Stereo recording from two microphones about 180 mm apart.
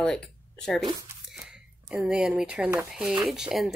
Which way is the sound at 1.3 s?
5° right (ahead or behind).